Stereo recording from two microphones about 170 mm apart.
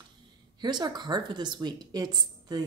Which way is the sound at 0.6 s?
25° right (ahead or behind).